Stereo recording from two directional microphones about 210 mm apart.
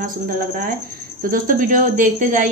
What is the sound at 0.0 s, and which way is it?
A woman's voice, 40° right (ahead or behind).